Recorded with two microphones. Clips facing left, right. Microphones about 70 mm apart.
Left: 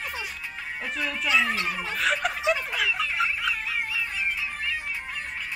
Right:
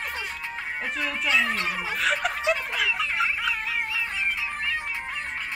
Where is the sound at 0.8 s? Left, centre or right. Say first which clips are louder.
Even; centre.